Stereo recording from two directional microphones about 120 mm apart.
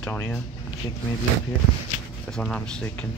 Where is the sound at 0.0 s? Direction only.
15° left (ahead or behind).